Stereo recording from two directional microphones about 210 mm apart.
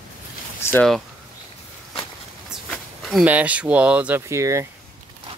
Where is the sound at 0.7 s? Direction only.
5° left (ahead or behind).